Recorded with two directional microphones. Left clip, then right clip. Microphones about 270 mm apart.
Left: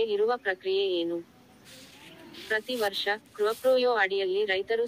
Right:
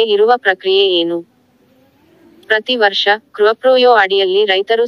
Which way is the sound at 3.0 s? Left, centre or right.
Right.